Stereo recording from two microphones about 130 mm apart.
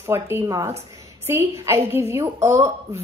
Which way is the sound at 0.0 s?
20° right (ahead or behind).